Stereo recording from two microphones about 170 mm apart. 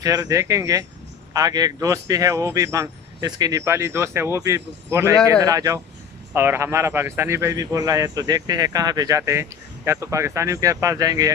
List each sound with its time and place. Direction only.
0.0 s a man's voice: 20° right (ahead or behind)